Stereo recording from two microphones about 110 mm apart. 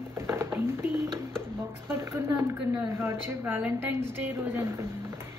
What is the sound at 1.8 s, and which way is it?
A woman's voice, 25° right (ahead or behind).